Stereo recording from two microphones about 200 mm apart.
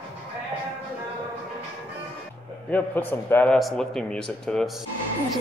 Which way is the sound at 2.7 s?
10° left (ahead or behind).